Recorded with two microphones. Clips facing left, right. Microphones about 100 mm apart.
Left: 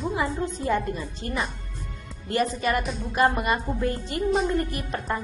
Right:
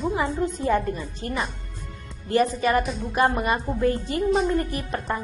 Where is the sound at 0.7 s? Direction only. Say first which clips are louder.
Right 2 dB; 20° right (ahead or behind).